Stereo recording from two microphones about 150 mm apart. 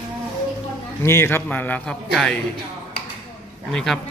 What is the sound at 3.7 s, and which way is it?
Speech, 5° left (ahead or behind).